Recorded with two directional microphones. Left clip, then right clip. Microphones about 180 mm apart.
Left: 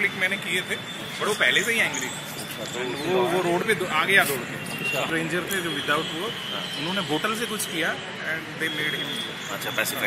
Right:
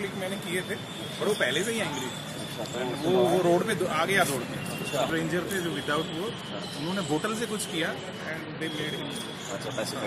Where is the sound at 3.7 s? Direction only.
65° right (ahead or behind).